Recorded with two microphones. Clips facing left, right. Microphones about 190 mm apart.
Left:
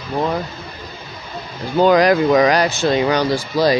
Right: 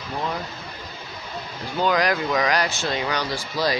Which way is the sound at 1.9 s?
25° left (ahead or behind).